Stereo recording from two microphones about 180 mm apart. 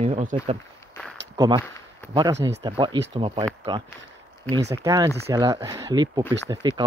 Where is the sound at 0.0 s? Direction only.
40° right (ahead or behind).